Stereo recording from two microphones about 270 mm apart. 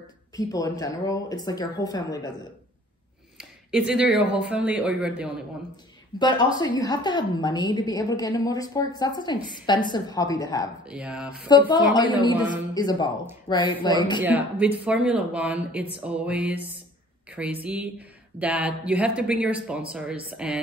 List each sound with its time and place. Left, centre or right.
0.4 s a woman's voice: centre
3.3 s speech: centre
6.1 s a woman's voice: centre
10.9 s speech: centre
11.4 s a woman's voice: centre
14.2 s speech: centre